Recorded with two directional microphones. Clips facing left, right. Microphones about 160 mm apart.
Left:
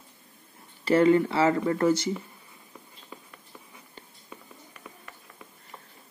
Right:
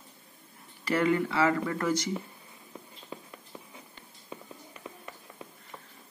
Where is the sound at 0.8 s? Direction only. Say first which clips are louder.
Left 6 dB; 30° left (ahead or behind).